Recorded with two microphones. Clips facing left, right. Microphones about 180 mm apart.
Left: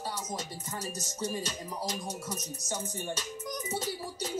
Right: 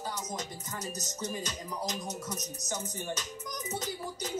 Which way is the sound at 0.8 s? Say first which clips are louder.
Left 2 dB; 25° left (ahead or behind).